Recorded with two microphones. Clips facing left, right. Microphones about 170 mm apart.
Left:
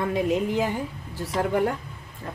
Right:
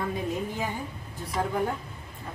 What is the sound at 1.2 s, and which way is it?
Speech, 75° left (ahead or behind).